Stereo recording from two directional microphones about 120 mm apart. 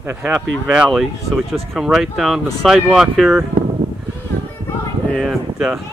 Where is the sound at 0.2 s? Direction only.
10° right (ahead or behind).